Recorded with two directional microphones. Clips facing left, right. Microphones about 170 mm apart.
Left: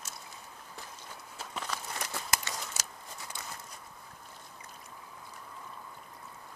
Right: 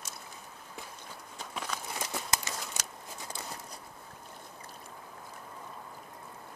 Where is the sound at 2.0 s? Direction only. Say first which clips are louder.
Right 2 dB; 20° right (ahead or behind).